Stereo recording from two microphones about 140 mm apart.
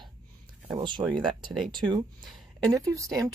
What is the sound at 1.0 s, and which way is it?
Speech, 25° right (ahead or behind).